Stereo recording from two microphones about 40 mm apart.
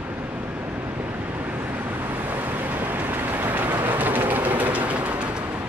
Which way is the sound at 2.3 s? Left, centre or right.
Right.